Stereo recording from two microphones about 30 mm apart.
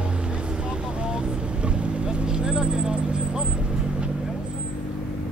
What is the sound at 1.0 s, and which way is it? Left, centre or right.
Vehicle, right.